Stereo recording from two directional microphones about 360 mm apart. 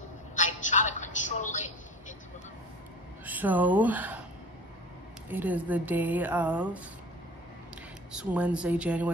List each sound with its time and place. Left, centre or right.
0.4 s a sound: centre
3.3 s speech: centre
5.3 s speech: centre
8.1 s speech: centre